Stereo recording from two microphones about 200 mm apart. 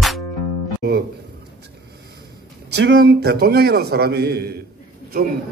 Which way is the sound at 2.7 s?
55° right (ahead or behind).